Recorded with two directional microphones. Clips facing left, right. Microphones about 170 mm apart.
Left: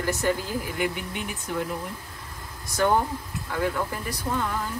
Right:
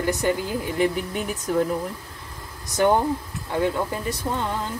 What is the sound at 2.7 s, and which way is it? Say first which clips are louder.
Speech: right 3 dB; 20° right (ahead or behind).